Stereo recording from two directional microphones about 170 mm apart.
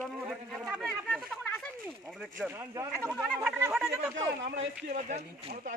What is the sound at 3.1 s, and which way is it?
Speech, 5° left (ahead or behind).